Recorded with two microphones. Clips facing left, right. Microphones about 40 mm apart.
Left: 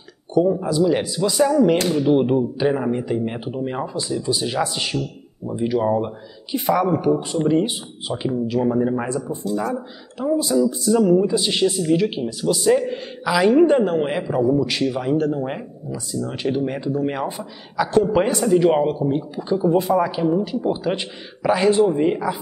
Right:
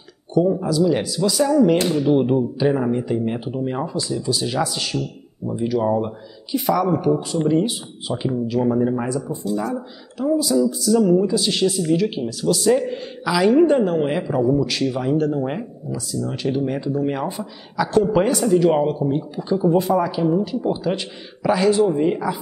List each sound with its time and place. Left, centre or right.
0.3 s speech: centre
6.5 s speech: left
8.1 s speech: left
8.5 s speech: centre
9.0 s speech: left; by 14.7 s centre
14.7 s speech: centre